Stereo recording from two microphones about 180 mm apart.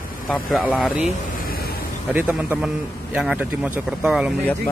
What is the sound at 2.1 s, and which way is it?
A man's voice, 10° right (ahead or behind).